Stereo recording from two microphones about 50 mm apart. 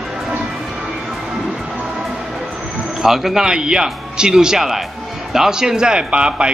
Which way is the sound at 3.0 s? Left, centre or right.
Centre.